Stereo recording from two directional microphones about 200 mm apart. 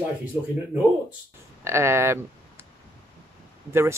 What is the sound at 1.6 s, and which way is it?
Speech, 15° right (ahead or behind).